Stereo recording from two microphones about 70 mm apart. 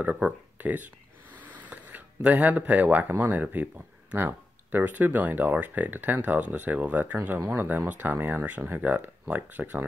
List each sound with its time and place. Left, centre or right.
0.0 s speech: right